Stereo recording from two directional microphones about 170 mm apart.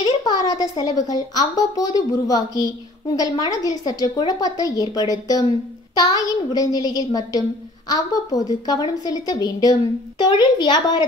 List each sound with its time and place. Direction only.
0.2 s a woman's voice: 25° left (ahead or behind)